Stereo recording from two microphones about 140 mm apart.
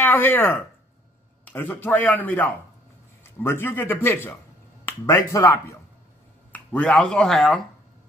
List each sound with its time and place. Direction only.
0.0 s a man's voice: 15° left (ahead or behind)
6.5 s speech: 10° left (ahead or behind)